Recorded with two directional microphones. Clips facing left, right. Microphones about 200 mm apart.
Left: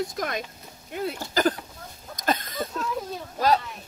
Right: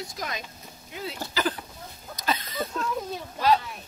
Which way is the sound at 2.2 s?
50° left (ahead or behind).